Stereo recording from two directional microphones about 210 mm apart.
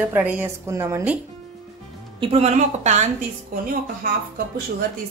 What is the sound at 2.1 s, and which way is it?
Speech, 30° right (ahead or behind).